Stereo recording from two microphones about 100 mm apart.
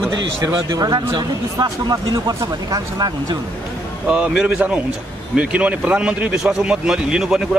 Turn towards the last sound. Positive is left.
turn(degrees=-5)  # may be behind; listen again after turning